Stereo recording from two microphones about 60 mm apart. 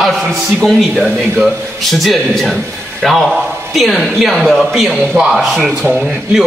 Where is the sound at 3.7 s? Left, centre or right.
Centre.